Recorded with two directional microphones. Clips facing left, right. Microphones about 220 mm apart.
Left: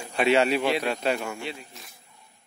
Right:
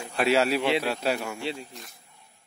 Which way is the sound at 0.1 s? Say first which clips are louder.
Left 2 dB; centre (ahead or behind).